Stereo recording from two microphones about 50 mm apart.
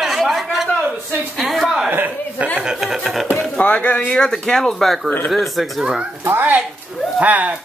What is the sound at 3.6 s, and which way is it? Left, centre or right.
Speech, left.